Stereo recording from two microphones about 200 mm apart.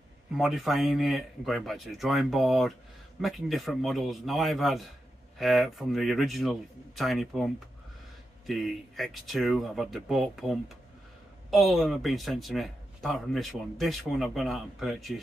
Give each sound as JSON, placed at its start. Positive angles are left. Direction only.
{"t": 0.4, "sound": "a man's voice", "side_deg": 0}